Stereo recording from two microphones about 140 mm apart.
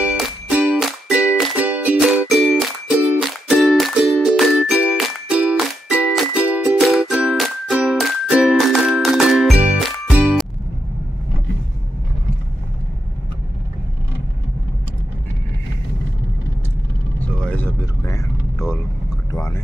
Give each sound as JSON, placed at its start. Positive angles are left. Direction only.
{"t": 0.0, "sound": "music", "side_deg": -10}
{"t": 9.8, "sound": "jingle", "side_deg": 0}
{"t": 17.4, "sound": "vehicle", "side_deg": 10}
{"t": 19.3, "sound": "a sound", "side_deg": 20}